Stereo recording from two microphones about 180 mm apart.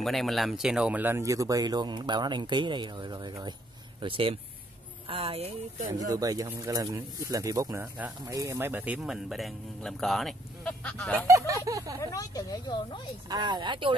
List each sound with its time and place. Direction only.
0.0 s speech: centre (ahead or behind); by 5.9 s 35° right (ahead or behind)
5.9 s speech: 20° right (ahead or behind); by 11.2 s 5° left (ahead or behind)
11.2 s speech: 15° right (ahead or behind)
12.0 s speech: 20° left (ahead or behind)
13.3 s speech: 25° right (ahead or behind)